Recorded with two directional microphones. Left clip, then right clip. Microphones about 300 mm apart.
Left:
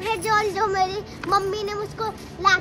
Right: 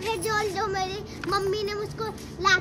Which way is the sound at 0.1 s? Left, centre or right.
Centre.